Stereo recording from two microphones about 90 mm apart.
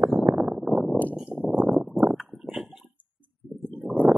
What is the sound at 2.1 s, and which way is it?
Clip-clop, 5° right (ahead or behind).